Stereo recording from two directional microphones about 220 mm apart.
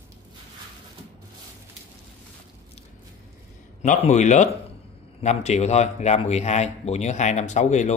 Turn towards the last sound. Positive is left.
turn(degrees=35)  # may be behind; listen again after turning